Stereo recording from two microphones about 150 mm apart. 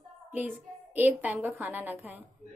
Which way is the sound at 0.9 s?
10° right (ahead or behind).